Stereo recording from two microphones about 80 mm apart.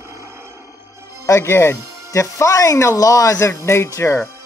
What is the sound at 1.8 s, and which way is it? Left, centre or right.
Music, right.